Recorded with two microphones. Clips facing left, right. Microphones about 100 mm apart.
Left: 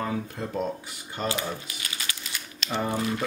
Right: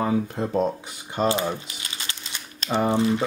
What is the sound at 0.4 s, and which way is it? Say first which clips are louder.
Speech: right 6 dB; 20° right (ahead or behind).